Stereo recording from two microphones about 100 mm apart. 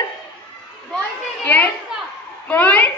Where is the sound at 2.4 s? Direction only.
15° left (ahead or behind).